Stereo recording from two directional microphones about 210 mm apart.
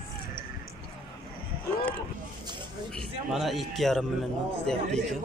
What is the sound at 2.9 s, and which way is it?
A man's voice, centre (ahead or behind).